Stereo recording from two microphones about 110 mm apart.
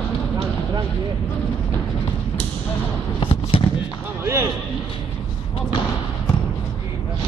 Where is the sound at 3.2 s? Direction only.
55° left (ahead or behind).